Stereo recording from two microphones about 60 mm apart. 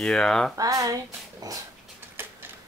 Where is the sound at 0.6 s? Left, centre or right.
Right.